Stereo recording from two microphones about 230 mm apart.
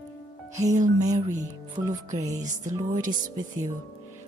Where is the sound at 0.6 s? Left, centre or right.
Right.